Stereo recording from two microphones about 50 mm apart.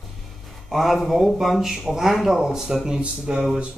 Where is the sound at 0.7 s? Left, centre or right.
Centre.